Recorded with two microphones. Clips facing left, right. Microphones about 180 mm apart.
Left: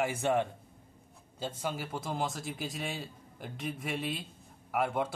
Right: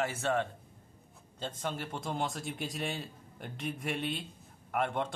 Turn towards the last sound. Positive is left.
turn(degrees=5)  # may be behind; listen again after turning